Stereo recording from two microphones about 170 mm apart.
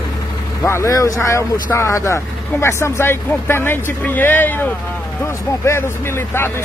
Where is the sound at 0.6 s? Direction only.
15° left (ahead or behind).